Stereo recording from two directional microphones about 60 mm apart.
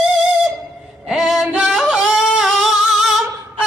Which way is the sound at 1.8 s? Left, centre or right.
Centre.